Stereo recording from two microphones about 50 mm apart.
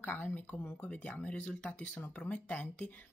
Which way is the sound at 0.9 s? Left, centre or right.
Left.